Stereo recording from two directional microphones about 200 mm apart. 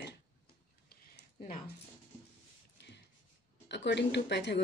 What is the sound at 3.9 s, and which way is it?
Speech, 60° left (ahead or behind).